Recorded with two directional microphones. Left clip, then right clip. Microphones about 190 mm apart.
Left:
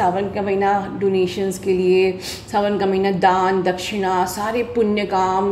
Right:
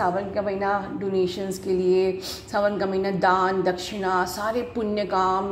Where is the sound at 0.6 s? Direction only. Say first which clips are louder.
Left 7 dB; 15° right (ahead or behind).